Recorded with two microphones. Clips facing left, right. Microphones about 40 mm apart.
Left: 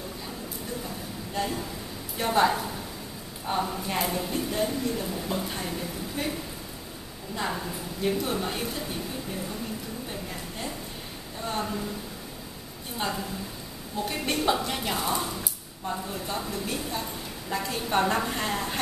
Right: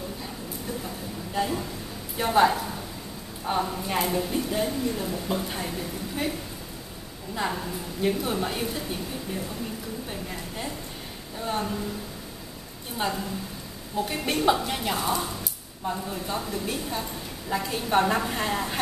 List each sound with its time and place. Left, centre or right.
0.8 s a sound: centre
2.1 s speech: centre
7.3 s speech: centre
10.0 s a woman's voice: centre
12.9 s speech: centre